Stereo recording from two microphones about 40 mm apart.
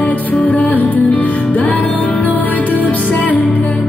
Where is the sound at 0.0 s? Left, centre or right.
Left.